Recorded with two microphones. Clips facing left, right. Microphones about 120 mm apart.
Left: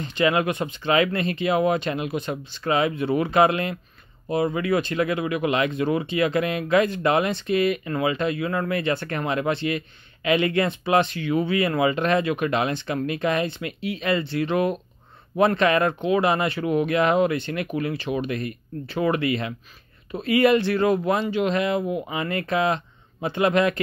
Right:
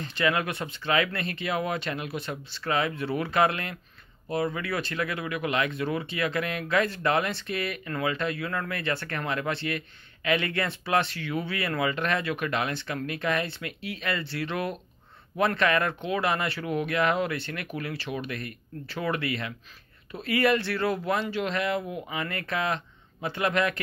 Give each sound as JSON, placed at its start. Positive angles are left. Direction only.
{"t": 0.0, "sound": "speech", "side_deg": 20}